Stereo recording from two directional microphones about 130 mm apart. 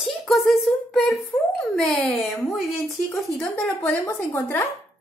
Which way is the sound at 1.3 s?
20° left (ahead or behind).